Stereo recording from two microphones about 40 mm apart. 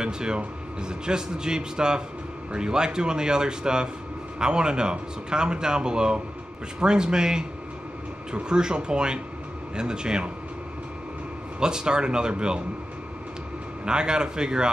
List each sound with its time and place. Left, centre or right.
0.0 s speech: right
11.6 s speech: centre
13.8 s speech: right